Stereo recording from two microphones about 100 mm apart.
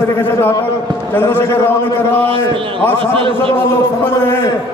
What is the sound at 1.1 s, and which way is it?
Speech, 20° left (ahead or behind).